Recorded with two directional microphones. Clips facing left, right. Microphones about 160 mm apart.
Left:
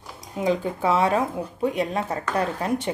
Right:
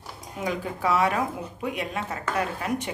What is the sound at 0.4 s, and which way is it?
Speech, 25° left (ahead or behind).